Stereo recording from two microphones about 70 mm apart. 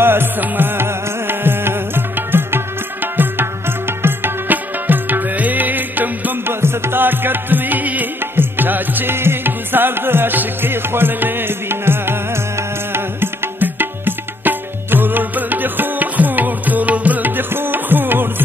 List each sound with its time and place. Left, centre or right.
0.0 s music: right